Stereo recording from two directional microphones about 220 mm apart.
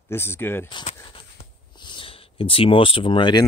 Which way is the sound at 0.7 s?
25° left (ahead or behind).